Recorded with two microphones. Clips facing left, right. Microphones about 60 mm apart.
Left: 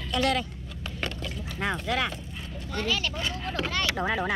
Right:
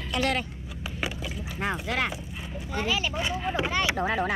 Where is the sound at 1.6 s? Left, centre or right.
Right.